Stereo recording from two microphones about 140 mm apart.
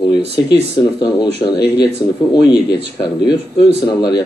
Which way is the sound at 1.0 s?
35° left (ahead or behind).